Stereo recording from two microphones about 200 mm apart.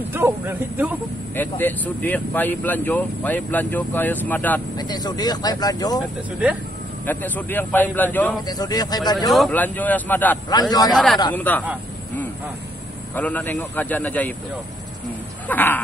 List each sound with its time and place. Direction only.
0.1 s speech: 10° right (ahead or behind)
1.3 s speech: 10° left (ahead or behind)
4.7 s speech: 20° left (ahead or behind)
7.1 s speech: 10° left (ahead or behind)
8.5 s speech: 20° left (ahead or behind)
9.3 s speech: 5° left (ahead or behind)
10.5 s speech: 20° left (ahead or behind)
11.3 s speech: 10° left (ahead or behind)
13.1 s speech: 10° left (ahead or behind)
15.4 s a sound: 10° left (ahead or behind)